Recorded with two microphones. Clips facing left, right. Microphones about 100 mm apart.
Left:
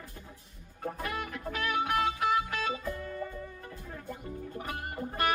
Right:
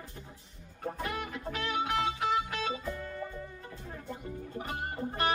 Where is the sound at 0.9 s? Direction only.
25° right (ahead or behind).